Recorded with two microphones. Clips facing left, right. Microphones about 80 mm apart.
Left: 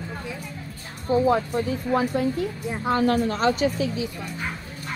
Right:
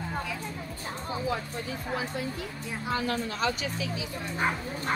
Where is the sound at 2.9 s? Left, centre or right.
Left.